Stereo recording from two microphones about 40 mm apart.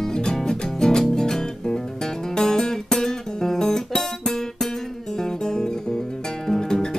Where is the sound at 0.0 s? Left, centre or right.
Centre.